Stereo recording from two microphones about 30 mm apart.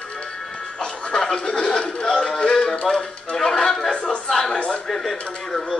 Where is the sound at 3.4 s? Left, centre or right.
Centre.